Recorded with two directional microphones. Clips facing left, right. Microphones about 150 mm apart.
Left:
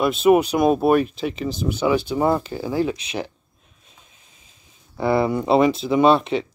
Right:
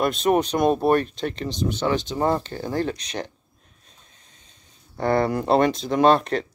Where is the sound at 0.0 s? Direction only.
5° left (ahead or behind).